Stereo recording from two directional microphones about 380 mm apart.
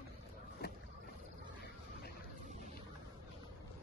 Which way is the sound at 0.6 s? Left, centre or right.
Left.